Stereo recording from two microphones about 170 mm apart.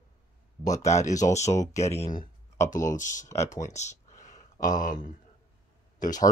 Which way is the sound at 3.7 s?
40° left (ahead or behind).